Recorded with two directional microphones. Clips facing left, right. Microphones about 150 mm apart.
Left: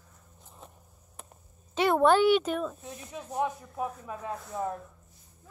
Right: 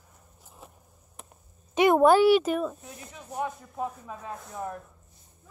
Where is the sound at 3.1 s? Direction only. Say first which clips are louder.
Left 2 dB; 15° left (ahead or behind).